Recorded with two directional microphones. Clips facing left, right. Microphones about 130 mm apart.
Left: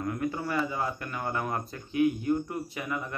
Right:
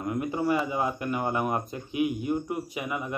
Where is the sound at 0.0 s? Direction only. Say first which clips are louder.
Right 3 dB; 20° right (ahead or behind).